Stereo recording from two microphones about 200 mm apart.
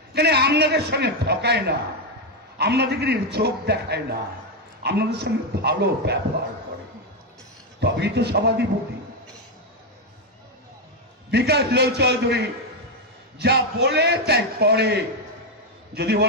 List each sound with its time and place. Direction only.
0.1 s a man's voice: 55° right (ahead or behind)
7.8 s a man's voice: 55° right (ahead or behind)
11.2 s a man's voice: 55° right (ahead or behind)